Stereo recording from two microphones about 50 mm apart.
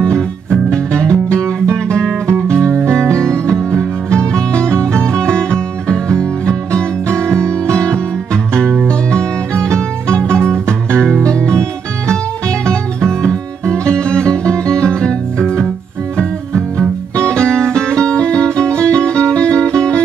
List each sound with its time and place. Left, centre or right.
0.0 s music: centre